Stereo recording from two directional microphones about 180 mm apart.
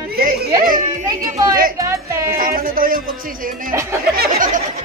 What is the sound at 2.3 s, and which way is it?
Music, 50° right (ahead or behind).